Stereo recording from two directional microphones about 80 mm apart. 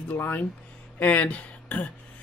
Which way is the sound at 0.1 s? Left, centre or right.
Left.